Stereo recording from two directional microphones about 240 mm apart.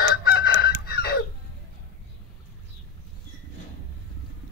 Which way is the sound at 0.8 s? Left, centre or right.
Left.